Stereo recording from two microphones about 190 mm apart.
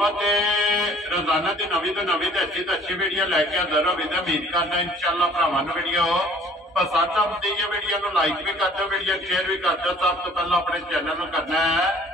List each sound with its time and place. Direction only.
0.0 s a man's voice: centre (ahead or behind)